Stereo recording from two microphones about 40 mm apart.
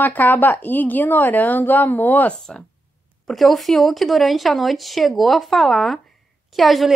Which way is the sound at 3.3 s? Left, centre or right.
Centre.